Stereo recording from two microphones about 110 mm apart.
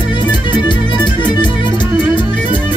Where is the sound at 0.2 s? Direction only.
45° left (ahead or behind).